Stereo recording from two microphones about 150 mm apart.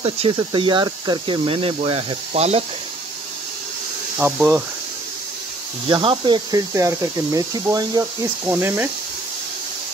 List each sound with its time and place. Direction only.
0.0 s speech: 35° right (ahead or behind)
5.9 s speech: 30° right (ahead or behind)
6.7 s speech: 20° right (ahead or behind)